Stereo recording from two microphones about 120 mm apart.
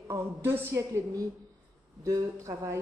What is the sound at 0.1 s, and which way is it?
A woman's voice, 20° right (ahead or behind).